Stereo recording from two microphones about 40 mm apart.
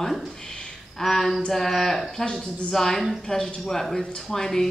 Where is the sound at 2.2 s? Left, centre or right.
Centre.